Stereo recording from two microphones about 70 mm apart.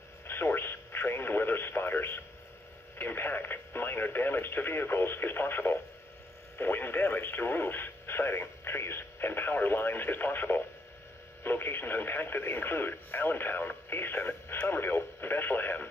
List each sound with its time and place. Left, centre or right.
0.3 s radio: left
6.6 s speech: left